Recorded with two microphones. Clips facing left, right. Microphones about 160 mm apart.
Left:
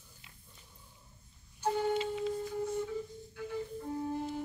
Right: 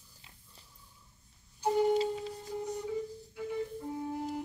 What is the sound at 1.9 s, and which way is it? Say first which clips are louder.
Music: right 2 dB; 35° right (ahead or behind).